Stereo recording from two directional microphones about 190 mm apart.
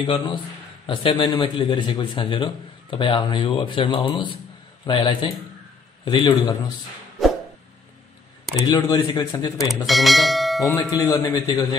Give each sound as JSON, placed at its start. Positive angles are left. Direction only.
{"t": 0.0, "sound": "a man's voice", "side_deg": 25}
{"t": 8.6, "sound": "a man's voice", "side_deg": 20}
{"t": 9.8, "sound": "speech", "side_deg": 0}
{"t": 10.8, "sound": "a man's voice", "side_deg": 15}